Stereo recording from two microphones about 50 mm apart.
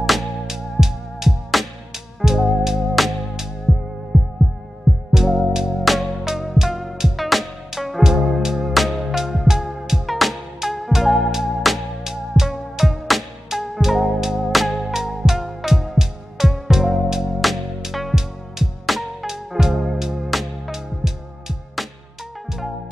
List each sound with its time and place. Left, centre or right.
0.0 s music: centre
5.1 s music: centre